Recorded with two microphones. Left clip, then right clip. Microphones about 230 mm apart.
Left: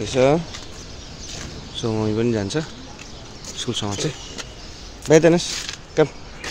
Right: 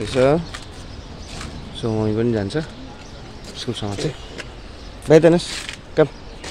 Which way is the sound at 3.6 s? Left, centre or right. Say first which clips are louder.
Even; centre.